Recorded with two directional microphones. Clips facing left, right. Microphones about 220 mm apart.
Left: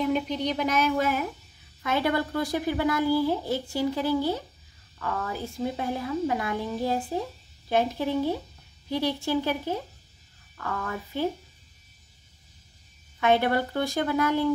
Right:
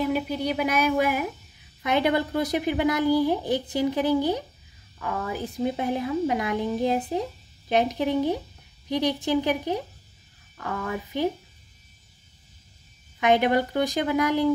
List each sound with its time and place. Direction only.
0.0 s a woman's voice: 5° right (ahead or behind)
13.2 s speech: 15° right (ahead or behind)